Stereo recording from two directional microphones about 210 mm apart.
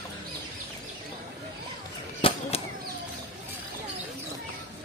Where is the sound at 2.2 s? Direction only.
30° left (ahead or behind).